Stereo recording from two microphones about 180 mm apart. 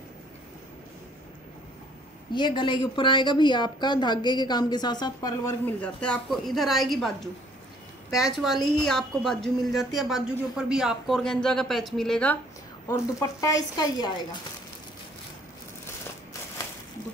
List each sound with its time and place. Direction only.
2.3 s a woman's voice: 25° left (ahead or behind); by 7.1 s centre (ahead or behind)
8.1 s speech: centre (ahead or behind)
12.8 s a woman's voice: 15° left (ahead or behind)